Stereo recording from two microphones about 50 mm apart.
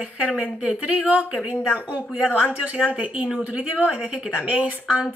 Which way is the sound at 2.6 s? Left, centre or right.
Centre.